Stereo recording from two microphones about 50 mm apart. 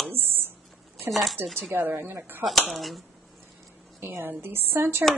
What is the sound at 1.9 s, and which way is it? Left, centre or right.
Speech, right.